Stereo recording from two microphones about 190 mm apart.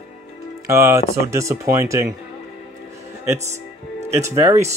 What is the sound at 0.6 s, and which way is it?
Speech, 15° right (ahead or behind).